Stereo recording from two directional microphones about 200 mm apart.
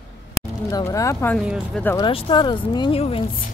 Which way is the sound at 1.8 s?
15° left (ahead or behind).